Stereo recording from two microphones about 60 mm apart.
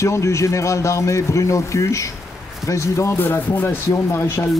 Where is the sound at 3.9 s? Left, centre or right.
Left.